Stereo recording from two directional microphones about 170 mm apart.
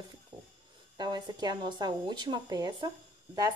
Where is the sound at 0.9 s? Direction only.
25° right (ahead or behind).